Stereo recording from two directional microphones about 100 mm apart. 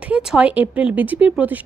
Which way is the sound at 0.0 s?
10° right (ahead or behind).